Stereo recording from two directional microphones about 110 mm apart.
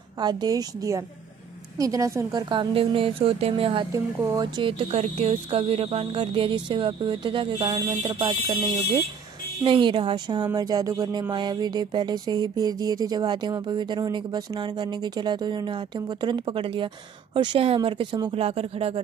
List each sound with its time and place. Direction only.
0.2 s speech: 40° right (ahead or behind)
2.3 s speech: 45° right (ahead or behind)
3.9 s speech: 30° right (ahead or behind)
4.6 s speech: 55° right (ahead or behind)
18.3 s speech: 65° right (ahead or behind)